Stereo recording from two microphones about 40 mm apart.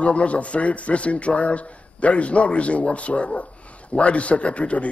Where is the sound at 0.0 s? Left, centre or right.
Left.